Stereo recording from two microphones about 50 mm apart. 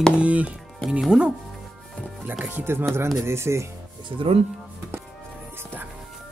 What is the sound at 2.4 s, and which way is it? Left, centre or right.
Speech, right.